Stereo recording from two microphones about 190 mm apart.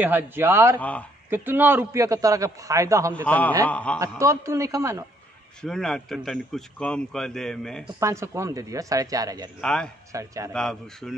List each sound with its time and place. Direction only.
0.0 s a man's voice: 10° right (ahead or behind)
0.7 s speech: 5° left (ahead or behind)
1.3 s a man's voice: 10° right (ahead or behind)
3.3 s speech: 10° left (ahead or behind)
4.2 s a man's voice: 15° right (ahead or behind)
5.6 s speech: 5° left (ahead or behind)
8.0 s a man's voice: 15° right (ahead or behind)
9.6 s speech: 5° left (ahead or behind)
10.1 s a man's voice: 15° right (ahead or behind)
10.5 s speech: 5° left (ahead or behind)